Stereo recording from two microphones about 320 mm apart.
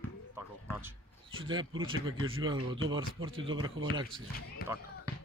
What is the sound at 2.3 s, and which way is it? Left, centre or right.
Speech, right.